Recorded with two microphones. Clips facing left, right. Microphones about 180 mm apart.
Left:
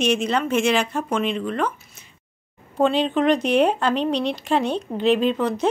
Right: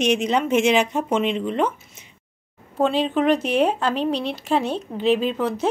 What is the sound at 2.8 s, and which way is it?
Speech, 5° right (ahead or behind).